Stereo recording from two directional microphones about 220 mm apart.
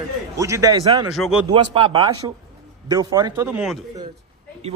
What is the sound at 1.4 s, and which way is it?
A man's voice, 25° right (ahead or behind).